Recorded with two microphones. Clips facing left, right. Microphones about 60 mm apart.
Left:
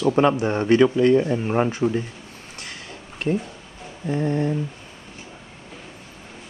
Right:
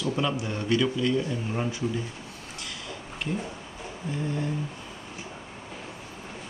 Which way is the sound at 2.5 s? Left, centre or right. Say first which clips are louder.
Left 1 dB; left.